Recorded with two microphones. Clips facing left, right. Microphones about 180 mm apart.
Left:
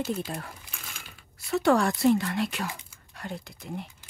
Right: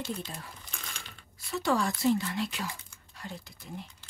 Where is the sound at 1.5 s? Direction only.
65° left (ahead or behind).